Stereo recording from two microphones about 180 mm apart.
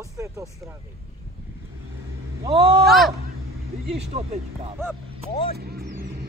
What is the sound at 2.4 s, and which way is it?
Speech, 35° right (ahead or behind).